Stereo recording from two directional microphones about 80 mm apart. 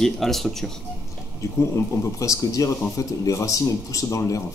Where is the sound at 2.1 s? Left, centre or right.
Left.